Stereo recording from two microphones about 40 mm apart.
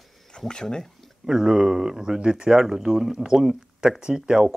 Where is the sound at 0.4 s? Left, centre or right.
Centre.